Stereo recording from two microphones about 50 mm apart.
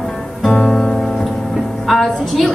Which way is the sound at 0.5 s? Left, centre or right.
Centre.